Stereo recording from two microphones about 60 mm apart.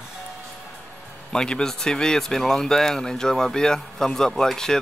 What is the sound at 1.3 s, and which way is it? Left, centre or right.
Speech, centre.